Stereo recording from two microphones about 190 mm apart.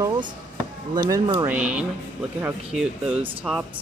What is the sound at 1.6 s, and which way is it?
Speech, 5° right (ahead or behind).